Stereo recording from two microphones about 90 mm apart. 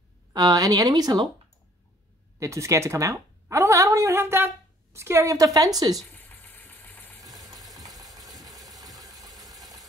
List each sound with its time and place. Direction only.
0.3 s speech: 50° right (ahead or behind)
2.3 s a woman's voice: 35° right (ahead or behind)
6.1 s engine: 20° left (ahead or behind)
7.5 s engine: centre (ahead or behind)
7.8 s engine: 45° right (ahead or behind)